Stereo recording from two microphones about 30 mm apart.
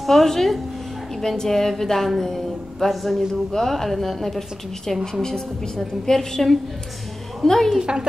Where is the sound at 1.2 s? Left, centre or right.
Centre.